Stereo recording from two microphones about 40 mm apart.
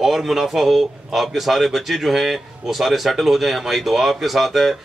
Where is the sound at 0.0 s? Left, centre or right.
Centre.